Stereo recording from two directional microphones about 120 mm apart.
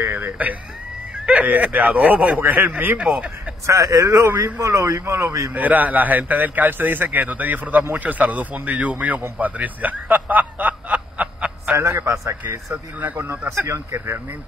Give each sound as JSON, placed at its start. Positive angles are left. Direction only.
{"t": 0.0, "sound": "a sound", "side_deg": -15}
{"t": 1.2, "sound": "a man's voice", "side_deg": -10}
{"t": 3.6, "sound": "speech", "side_deg": -25}
{"t": 4.2, "sound": "speech", "side_deg": -15}
{"t": 5.5, "sound": "a man's voice", "side_deg": -15}
{"t": 11.7, "sound": "speech", "side_deg": -25}